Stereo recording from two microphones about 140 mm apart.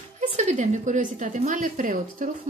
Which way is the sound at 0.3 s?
55° right (ahead or behind).